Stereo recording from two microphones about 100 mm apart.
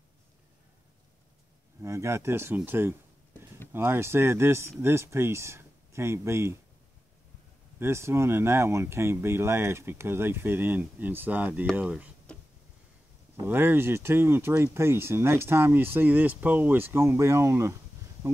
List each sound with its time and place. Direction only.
1.8 s speech: 30° right (ahead or behind)
7.8 s speech: 25° right (ahead or behind)
12.3 s a sound: 10° left (ahead or behind)
13.4 s speech: 20° right (ahead or behind)